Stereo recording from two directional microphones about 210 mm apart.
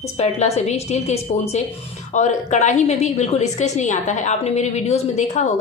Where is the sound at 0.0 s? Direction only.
30° left (ahead or behind).